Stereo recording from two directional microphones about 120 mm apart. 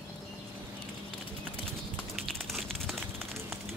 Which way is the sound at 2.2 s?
Centre (ahead or behind).